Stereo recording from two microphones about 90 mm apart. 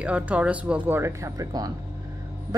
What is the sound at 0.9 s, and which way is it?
Speech, 30° right (ahead or behind).